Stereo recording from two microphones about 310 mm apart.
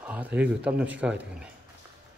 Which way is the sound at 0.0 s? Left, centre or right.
Centre.